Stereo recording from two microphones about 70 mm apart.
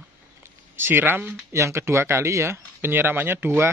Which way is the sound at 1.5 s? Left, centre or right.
Right.